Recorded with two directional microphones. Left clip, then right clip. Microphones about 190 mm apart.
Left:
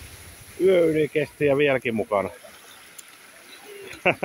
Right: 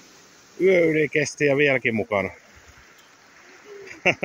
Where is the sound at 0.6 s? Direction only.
15° right (ahead or behind).